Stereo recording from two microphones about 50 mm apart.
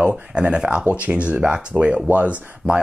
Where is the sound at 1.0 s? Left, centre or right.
Right.